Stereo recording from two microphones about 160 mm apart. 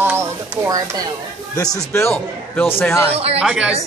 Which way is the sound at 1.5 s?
20° left (ahead or behind).